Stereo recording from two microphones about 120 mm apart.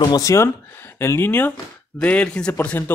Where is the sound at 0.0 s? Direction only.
30° left (ahead or behind).